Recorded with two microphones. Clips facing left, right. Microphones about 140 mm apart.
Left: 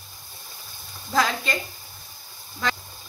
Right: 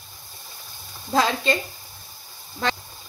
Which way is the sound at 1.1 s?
25° right (ahead or behind).